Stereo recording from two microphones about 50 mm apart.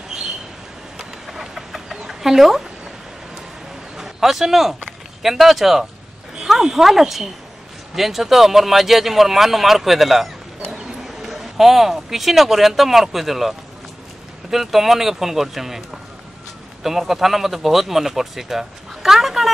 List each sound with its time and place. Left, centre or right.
0.9 s a sound: centre
2.0 s speech: centre
3.9 s a man's voice: centre
17.1 s speech: centre